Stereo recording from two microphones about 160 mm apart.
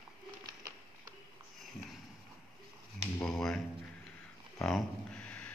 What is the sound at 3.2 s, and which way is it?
Speech, 5° left (ahead or behind).